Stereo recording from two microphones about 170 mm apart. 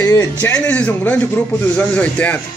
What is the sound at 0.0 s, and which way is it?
Speech, 20° left (ahead or behind).